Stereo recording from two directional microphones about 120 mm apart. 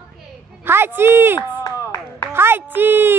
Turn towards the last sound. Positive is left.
turn(degrees=-15)  # may be behind; listen again after turning